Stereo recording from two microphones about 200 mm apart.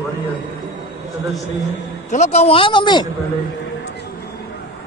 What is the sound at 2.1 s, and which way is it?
Speech, 35° left (ahead or behind).